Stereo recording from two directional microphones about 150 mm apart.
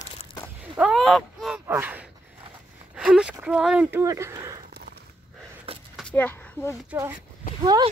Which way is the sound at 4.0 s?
20° right (ahead or behind).